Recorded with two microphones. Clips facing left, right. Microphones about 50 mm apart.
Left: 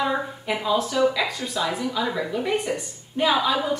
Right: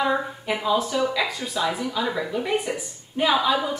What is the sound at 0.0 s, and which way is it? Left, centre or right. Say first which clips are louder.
A woman's voice: right 1 dB; centre.